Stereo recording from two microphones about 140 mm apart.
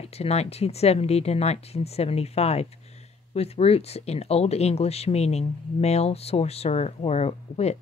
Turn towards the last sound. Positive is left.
turn(degrees=50)  # may be behind; listen again after turning